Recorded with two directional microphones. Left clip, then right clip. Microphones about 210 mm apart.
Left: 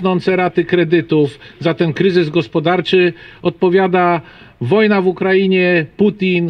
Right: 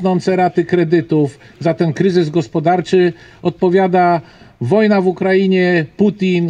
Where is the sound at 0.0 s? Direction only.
25° right (ahead or behind).